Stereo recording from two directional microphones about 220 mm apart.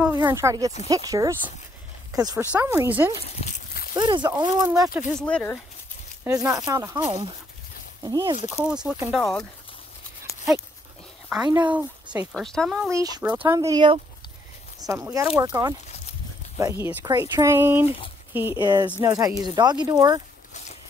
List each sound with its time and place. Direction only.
0.0 s speech: 15° right (ahead or behind)
3.4 s a sound: 40° left (ahead or behind)
3.9 s speech: 20° right (ahead or behind)
5.2 s speech: 5° left (ahead or behind)
6.2 s speech: 15° right (ahead or behind)
7.1 s speech: 25° right (ahead or behind)
8.6 s speech: 5° right (ahead or behind)
11.4 s speech: 10° right (ahead or behind)
12.9 s speech: 10° right (ahead or behind)